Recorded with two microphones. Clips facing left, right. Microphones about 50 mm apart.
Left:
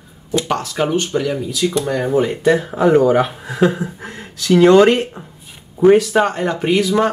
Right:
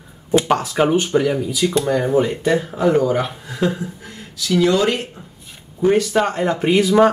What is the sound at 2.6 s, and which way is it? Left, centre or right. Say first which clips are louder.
Speech: left 5 dB; centre.